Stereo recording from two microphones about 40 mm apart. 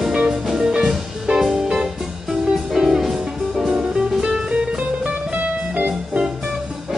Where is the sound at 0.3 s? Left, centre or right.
Centre.